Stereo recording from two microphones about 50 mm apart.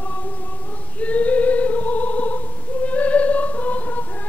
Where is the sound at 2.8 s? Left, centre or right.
Left.